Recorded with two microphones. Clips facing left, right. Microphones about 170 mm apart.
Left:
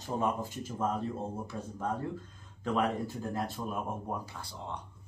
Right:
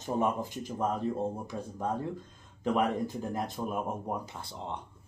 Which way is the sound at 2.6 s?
15° right (ahead or behind).